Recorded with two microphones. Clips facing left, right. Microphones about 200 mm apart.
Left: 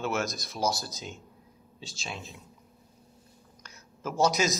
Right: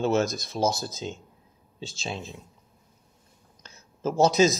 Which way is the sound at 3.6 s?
30° right (ahead or behind).